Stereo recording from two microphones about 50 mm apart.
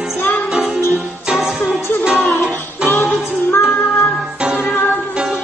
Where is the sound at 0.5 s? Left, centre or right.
Centre.